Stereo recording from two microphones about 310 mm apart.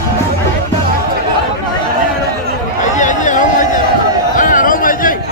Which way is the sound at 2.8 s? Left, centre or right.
Left.